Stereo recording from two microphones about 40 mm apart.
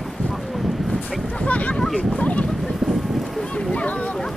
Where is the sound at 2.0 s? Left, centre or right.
Left.